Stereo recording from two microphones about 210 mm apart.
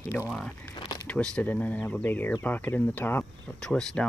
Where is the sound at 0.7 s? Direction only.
20° left (ahead or behind).